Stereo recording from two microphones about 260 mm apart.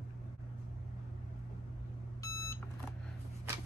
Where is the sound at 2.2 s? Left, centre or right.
Centre.